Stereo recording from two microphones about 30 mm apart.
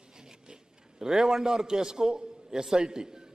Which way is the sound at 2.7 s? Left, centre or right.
Right.